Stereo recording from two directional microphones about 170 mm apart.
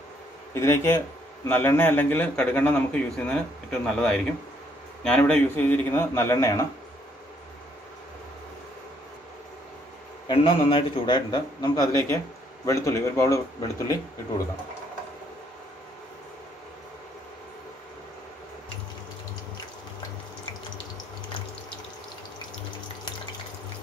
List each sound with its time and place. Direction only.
0.6 s a man's voice: 15° left (ahead or behind)
10.2 s a man's voice: 30° left (ahead or behind)